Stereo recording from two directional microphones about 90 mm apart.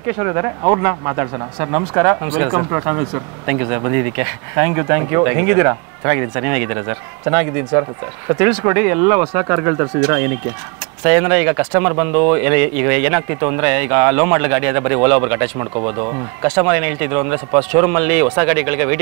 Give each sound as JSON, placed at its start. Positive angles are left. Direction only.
{"t": 0.1, "sound": "speech", "side_deg": -25}
{"t": 15.6, "sound": "speech", "side_deg": -30}
{"t": 16.4, "sound": "speech", "side_deg": -20}